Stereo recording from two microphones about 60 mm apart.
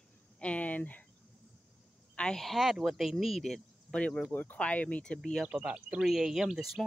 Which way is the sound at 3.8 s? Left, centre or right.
Centre.